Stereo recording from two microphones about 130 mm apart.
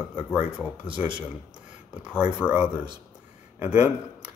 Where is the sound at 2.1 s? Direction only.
10° right (ahead or behind).